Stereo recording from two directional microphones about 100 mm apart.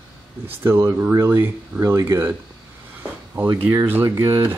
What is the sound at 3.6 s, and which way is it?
Speech, 25° right (ahead or behind).